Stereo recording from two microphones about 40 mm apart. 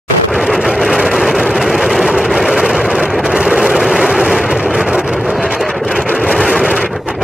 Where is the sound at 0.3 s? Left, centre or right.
Centre.